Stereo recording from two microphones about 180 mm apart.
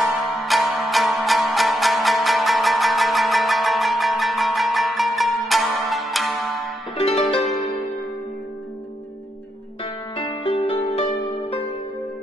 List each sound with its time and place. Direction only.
0.0 s music: centre (ahead or behind)
7.0 s music: 35° left (ahead or behind)
10.1 s music: 30° left (ahead or behind)